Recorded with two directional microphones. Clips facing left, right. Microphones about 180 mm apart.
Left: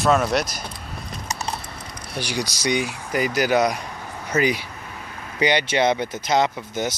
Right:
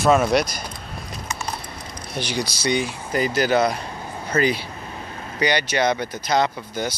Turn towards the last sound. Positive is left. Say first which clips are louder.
# left 1 dB
turn(degrees=20)  # may be behind; listen again after turning